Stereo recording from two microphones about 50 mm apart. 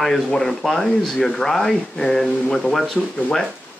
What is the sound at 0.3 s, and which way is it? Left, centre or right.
Speech, centre.